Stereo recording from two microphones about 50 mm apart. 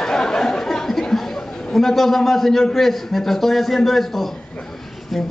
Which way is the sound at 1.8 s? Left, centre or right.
Centre.